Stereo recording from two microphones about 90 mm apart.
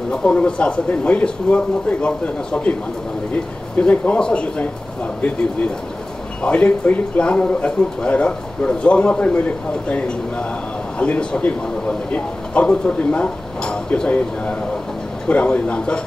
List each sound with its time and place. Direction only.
0.1 s speech: 15° left (ahead or behind)
3.8 s speech: 15° left (ahead or behind)